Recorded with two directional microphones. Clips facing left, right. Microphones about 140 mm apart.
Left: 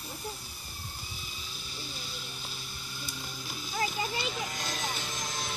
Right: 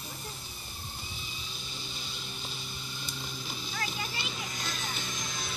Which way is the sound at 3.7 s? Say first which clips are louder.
Left 6 dB; 15° left (ahead or behind).